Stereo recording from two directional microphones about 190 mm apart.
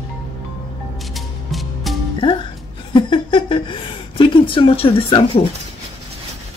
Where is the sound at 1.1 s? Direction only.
Centre (ahead or behind).